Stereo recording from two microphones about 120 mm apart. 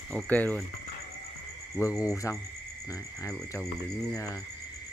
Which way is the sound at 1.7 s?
25° left (ahead or behind).